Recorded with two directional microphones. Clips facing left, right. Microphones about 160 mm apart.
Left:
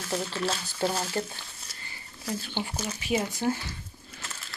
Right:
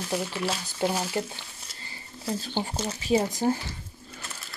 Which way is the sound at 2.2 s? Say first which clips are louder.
Right 3 dB; 40° right (ahead or behind).